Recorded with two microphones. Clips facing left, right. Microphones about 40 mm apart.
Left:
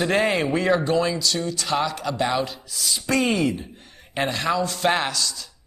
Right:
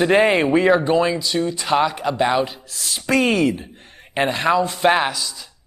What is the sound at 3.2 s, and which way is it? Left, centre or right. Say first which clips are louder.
Speech: right 4 dB; right.